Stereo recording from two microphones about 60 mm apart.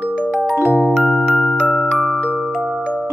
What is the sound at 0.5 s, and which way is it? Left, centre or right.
Music, right.